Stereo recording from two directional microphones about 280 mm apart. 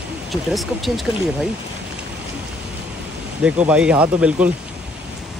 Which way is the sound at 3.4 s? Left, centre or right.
Centre.